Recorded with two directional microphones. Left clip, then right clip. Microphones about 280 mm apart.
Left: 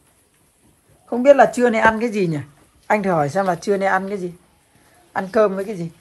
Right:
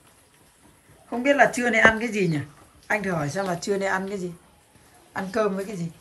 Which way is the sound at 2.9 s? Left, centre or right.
Centre.